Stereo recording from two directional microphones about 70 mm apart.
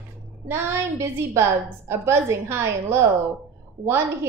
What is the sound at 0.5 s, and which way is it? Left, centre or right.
A woman's voice, right.